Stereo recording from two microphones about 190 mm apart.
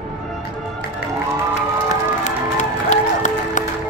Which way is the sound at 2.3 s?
40° left (ahead or behind).